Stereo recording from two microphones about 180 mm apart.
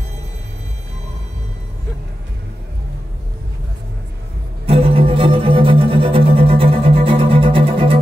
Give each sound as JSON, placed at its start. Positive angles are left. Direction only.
{"t": 4.6, "sound": "music", "side_deg": -30}